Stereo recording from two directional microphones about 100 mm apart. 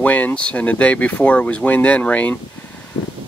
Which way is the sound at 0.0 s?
15° left (ahead or behind).